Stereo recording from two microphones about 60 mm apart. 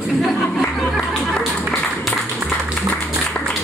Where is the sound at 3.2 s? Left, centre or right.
Left.